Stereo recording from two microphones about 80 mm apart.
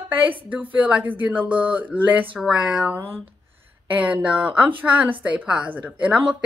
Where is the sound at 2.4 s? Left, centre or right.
Centre.